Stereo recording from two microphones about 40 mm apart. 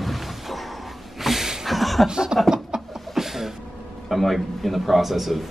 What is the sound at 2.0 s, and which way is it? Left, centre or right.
Speech, centre.